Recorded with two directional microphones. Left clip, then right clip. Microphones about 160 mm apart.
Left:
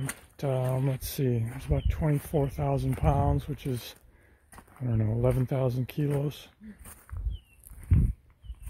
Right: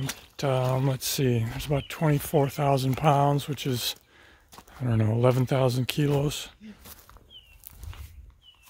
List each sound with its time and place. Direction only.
0.1 s speech: 20° right (ahead or behind)